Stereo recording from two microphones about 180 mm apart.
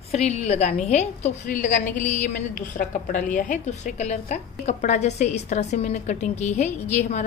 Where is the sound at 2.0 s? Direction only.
40° left (ahead or behind).